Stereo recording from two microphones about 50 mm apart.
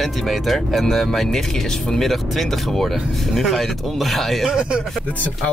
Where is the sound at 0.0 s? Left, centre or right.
Centre.